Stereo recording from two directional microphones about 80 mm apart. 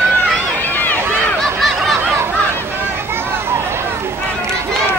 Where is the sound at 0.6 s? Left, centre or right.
Left.